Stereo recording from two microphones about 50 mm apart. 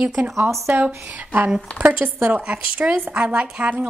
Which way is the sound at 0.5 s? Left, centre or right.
Right.